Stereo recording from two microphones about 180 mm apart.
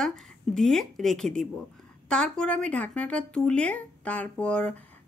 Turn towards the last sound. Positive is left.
turn(degrees=5)  # may be behind; listen again after turning